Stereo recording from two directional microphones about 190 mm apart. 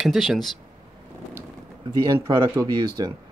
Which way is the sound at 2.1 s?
20° right (ahead or behind).